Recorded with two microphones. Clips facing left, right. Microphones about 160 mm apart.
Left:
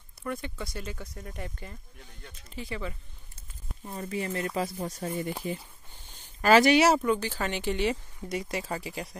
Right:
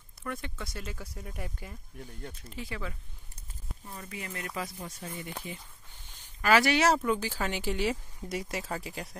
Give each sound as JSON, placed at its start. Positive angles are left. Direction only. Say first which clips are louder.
{"t": 0.2, "sound": "speech", "louder": "left 3 dB", "side_deg": 0}
{"t": 3.8, "sound": "speech", "louder": "left 9 dB", "side_deg": 35}
{"t": 6.6, "sound": "speech", "louder": "left 5 dB", "side_deg": 15}
{"t": 6.9, "sound": "speech", "louder": "left 2 dB", "side_deg": 0}